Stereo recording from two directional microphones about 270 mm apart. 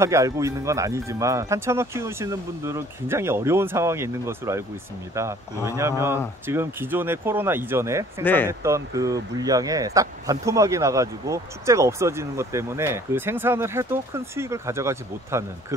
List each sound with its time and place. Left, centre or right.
0.0 s speech: centre
5.8 s speech: centre
8.2 s speech: centre
8.5 s speech: centre